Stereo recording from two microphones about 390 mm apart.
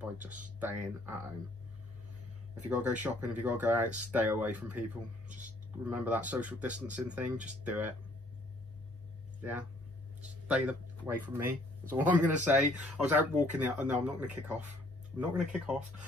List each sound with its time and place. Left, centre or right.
0.0 s speech: centre
2.7 s speech: centre
9.4 s speech: centre